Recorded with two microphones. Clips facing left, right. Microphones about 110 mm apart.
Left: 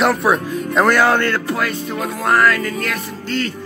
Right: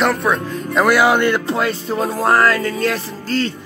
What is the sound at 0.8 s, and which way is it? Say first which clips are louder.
Music: right 1 dB; 10° right (ahead or behind).